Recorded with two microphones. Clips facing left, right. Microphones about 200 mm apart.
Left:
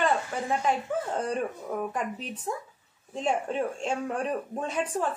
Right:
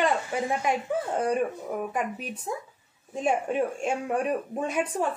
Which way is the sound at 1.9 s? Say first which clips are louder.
Right 2 dB; 10° right (ahead or behind).